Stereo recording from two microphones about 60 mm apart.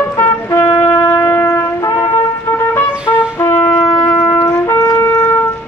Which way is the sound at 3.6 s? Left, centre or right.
Left.